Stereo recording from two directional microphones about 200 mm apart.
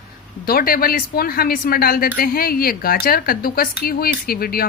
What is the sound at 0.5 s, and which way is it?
Speech, 45° left (ahead or behind).